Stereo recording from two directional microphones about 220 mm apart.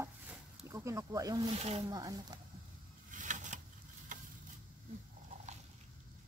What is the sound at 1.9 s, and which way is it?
Speech, 15° right (ahead or behind).